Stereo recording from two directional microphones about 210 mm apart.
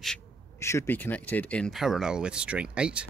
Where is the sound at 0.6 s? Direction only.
15° left (ahead or behind).